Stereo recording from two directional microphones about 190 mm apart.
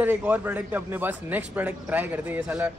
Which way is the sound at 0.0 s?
10° right (ahead or behind).